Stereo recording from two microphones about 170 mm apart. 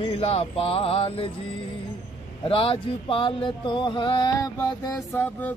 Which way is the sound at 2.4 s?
30° left (ahead or behind).